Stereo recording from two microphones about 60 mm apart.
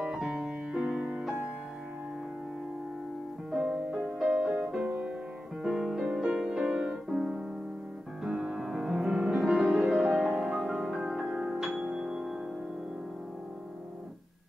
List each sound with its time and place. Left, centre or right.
0.1 s music: centre
3.5 s music: centre
3.9 s music: centre
4.3 s music: centre
5.6 s music: centre
7.1 s keyboard: centre
8.3 s music: centre